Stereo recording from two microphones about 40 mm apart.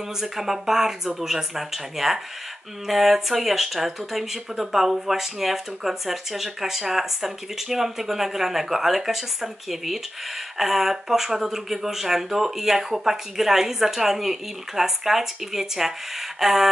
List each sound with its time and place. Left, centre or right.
0.2 s speech: centre